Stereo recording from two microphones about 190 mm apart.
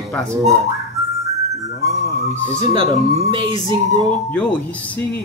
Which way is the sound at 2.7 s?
25° right (ahead or behind).